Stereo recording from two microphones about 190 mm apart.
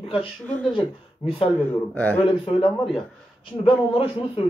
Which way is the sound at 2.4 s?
25° left (ahead or behind).